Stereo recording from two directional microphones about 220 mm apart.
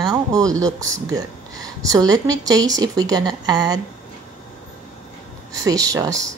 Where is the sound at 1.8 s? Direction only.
15° right (ahead or behind).